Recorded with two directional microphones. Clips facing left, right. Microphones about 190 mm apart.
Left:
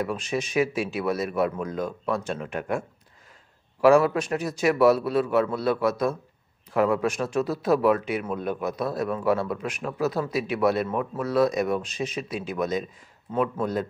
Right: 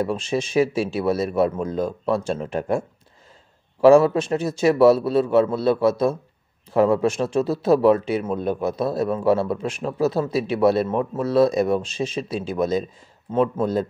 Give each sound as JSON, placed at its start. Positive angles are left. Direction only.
{"t": 0.0, "sound": "a man's voice", "side_deg": -30}
{"t": 3.8, "sound": "a man's voice", "side_deg": -25}